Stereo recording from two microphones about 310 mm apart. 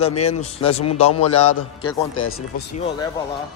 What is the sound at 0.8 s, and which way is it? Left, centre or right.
Speech, left.